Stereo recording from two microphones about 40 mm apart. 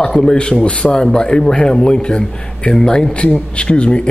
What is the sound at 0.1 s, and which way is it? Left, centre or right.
A man's voice, centre.